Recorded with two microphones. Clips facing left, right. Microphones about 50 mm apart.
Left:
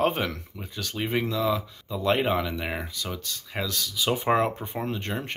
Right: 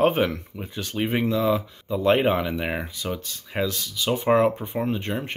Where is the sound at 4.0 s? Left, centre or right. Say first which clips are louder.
Right 4 dB; centre.